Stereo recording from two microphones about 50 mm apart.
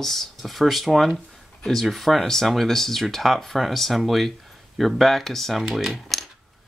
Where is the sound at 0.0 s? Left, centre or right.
Centre.